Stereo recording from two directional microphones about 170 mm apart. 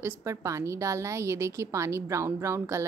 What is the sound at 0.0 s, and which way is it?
A woman's voice, 15° right (ahead or behind).